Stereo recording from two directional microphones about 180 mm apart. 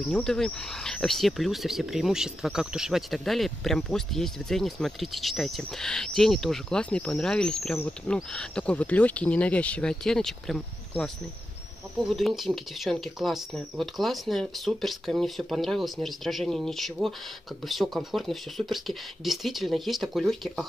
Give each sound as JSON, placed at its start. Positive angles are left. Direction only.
{"t": 0.1, "sound": "speech", "side_deg": 5}
{"t": 12.1, "sound": "speech", "side_deg": 0}